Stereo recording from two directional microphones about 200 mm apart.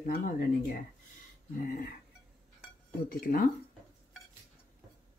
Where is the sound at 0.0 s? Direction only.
45° left (ahead or behind).